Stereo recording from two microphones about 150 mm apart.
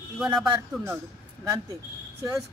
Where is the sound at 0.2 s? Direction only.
5° right (ahead or behind).